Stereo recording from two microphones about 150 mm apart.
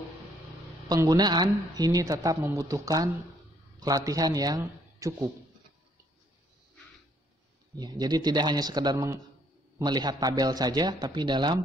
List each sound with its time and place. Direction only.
0.8 s a woman's voice: 25° right (ahead or behind)
7.8 s a woman's voice: 25° right (ahead or behind)